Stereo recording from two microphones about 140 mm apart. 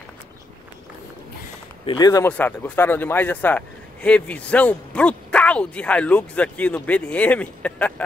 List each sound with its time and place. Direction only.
1.9 s speech: 30° left (ahead or behind)
2.2 s a man's voice: 10° left (ahead or behind)